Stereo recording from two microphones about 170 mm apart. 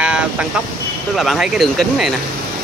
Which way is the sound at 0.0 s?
5° right (ahead or behind).